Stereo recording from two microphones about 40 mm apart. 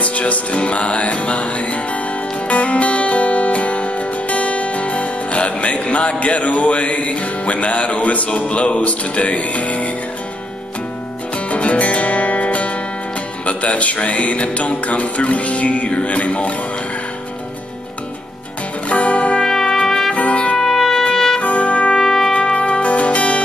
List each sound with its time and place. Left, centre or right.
0.0 s music: left
11.3 s music: left
18.9 s music: left
19.4 s trumpet: centre
20.2 s trumpet: left
20.5 s music: centre
21.0 s trumpet: centre
21.4 s trumpet: left
21.9 s trumpet: centre
22.3 s music: left